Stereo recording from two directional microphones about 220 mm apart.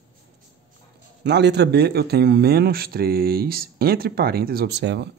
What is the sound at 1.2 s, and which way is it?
Speech, 50° right (ahead or behind).